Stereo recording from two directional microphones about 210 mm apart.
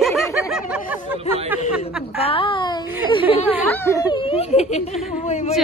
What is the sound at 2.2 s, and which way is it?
A child's voice, 25° left (ahead or behind).